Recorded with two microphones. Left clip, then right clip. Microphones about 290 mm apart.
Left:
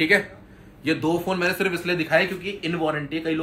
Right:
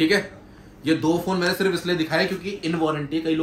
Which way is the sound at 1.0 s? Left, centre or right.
Centre.